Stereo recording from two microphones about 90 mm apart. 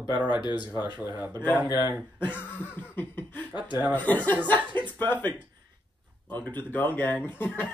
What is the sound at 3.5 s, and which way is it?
Speech, 55° left (ahead or behind).